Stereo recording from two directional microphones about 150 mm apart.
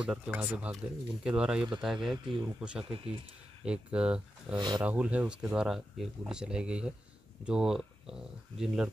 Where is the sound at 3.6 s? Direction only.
5° right (ahead or behind).